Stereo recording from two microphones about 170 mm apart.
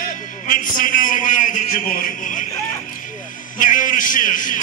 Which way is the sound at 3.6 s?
50° left (ahead or behind).